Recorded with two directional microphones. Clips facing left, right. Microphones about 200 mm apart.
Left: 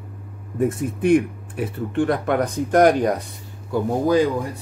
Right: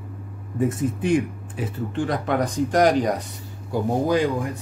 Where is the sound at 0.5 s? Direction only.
60° left (ahead or behind).